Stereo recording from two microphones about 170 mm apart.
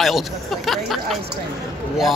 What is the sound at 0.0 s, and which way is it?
Speech, centre (ahead or behind).